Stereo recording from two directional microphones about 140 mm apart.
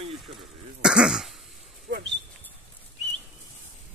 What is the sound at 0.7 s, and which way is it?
Throat clearing, 5° right (ahead or behind).